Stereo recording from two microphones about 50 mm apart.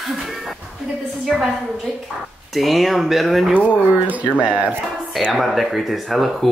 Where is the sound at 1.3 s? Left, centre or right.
Centre.